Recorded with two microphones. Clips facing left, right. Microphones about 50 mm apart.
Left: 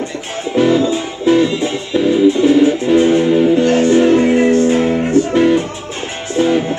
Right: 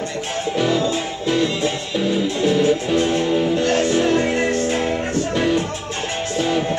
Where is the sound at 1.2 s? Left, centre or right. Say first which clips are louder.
Left 8 dB; left.